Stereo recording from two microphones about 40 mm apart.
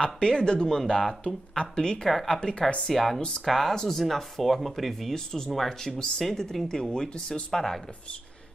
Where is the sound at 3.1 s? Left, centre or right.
Left.